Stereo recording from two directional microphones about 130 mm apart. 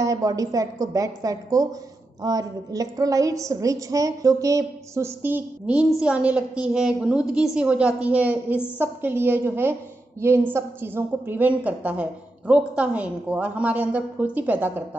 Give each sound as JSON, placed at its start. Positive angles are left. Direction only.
{"t": 0.0, "sound": "a woman's voice", "side_deg": -25}